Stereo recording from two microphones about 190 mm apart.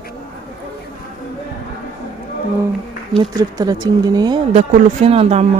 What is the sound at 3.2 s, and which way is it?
Speech, 20° right (ahead or behind).